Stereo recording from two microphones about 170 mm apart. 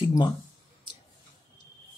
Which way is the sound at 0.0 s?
25° left (ahead or behind).